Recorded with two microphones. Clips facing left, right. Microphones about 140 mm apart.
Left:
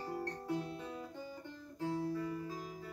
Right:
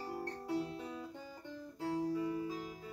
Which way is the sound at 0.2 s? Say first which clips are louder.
Right 3 dB; 10° right (ahead or behind).